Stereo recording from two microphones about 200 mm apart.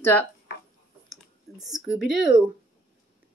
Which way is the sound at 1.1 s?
Centre (ahead or behind).